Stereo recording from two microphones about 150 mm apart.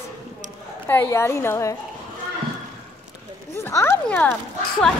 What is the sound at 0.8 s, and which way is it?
Speech, 15° left (ahead or behind).